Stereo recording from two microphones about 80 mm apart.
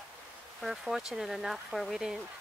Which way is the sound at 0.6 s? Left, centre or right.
Centre.